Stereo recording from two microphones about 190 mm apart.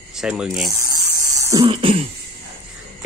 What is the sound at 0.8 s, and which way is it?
Electric toothbrush, 15° right (ahead or behind).